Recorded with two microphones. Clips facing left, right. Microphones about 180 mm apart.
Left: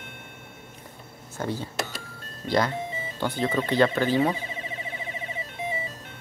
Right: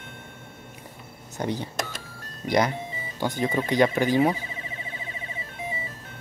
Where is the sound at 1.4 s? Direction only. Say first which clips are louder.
Right 1 dB; 20° right (ahead or behind).